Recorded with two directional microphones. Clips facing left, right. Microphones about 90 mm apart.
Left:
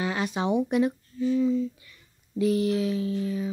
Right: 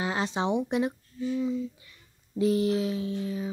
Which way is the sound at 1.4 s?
20° right (ahead or behind).